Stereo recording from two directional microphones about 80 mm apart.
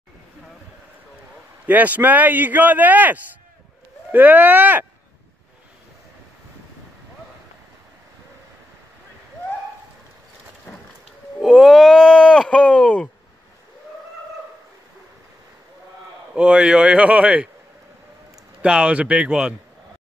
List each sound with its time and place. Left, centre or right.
1.7 s speech: right
11.4 s speech: centre
16.3 s speech: centre
18.6 s speech: centre